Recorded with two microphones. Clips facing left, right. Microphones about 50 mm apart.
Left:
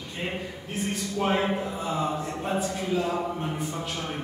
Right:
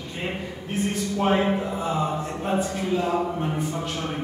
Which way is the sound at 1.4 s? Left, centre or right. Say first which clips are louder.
Right 4 dB; centre.